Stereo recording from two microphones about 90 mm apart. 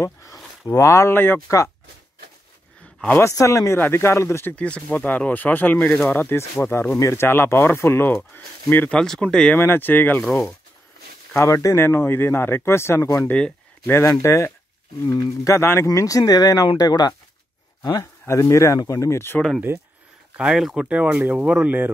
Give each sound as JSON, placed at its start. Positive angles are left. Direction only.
{"t": 0.0, "sound": "a sound", "side_deg": 40}
{"t": 0.7, "sound": "speech", "side_deg": 35}
{"t": 3.2, "sound": "speech", "side_deg": 35}
{"t": 4.6, "sound": "speech", "side_deg": 15}
{"t": 8.9, "sound": "speech", "side_deg": 5}
{"t": 9.6, "sound": "speech", "side_deg": 20}
{"t": 11.3, "sound": "speech", "side_deg": 35}
{"t": 18.2, "sound": "speech", "side_deg": 35}
{"t": 19.7, "sound": "speech", "side_deg": -25}
{"t": 20.3, "sound": "speech", "side_deg": -5}
{"t": 20.8, "sound": "speech", "side_deg": -15}